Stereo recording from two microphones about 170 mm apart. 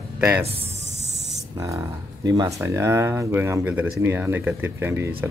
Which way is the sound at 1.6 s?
20° right (ahead or behind).